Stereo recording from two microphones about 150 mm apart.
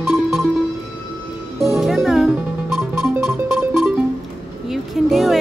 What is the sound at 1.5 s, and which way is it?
Music, centre (ahead or behind).